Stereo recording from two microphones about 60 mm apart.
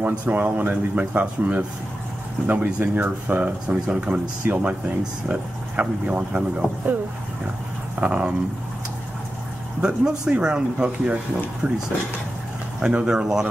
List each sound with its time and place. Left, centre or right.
0.2 s speech: right
8.0 s speech: right
9.8 s speech: centre
11.6 s speech: right
12.8 s speech: centre